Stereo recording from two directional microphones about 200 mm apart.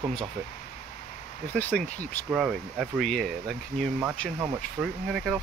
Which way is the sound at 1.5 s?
10° left (ahead or behind).